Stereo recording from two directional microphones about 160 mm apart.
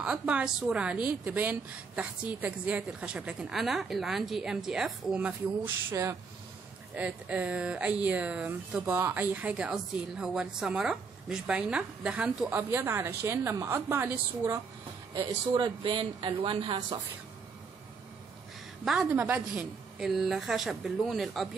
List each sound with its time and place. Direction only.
0.0 s a woman's voice: 5° right (ahead or behind)
5.9 s speech: 20° right (ahead or behind)
7.0 s speech: 10° right (ahead or behind)
15.1 s speech: 30° right (ahead or behind)
19.1 s a woman's voice: 10° right (ahead or behind)